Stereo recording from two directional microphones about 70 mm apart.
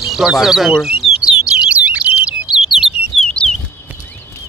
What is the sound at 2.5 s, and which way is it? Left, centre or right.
Bird, centre.